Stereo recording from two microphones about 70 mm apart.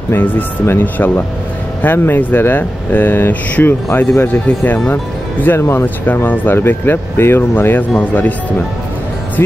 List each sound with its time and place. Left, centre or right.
0.1 s speech: left